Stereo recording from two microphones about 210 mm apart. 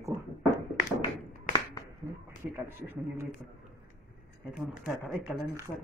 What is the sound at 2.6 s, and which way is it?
Speech, 10° right (ahead or behind).